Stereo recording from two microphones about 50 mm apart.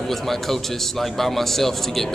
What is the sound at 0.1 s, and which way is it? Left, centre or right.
A man's voice, centre.